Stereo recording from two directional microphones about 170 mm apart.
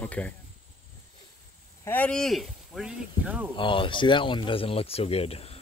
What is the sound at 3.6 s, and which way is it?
Speech, 30° left (ahead or behind).